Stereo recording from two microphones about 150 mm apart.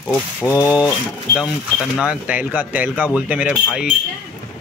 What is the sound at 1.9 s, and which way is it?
A man's voice, 5° right (ahead or behind).